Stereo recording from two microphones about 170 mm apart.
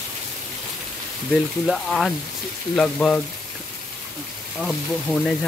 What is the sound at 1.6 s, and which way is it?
Speech, centre (ahead or behind).